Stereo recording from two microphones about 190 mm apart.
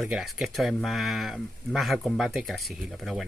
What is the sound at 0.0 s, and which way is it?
Speech, centre (ahead or behind).